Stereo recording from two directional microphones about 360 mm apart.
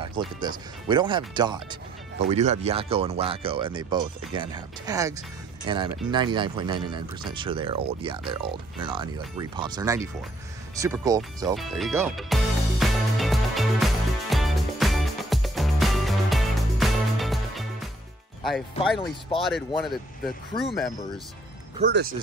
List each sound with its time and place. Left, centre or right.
0.0 s speech: centre
11.5 s music: centre
18.8 s speech: centre
19.8 s speech: centre
21.7 s speech: right